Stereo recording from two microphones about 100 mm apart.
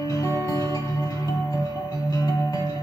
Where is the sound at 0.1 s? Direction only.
30° left (ahead or behind).